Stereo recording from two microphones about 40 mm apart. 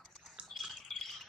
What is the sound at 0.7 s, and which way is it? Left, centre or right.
Bird, centre.